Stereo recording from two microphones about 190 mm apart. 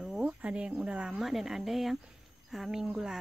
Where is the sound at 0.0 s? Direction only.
5° right (ahead or behind).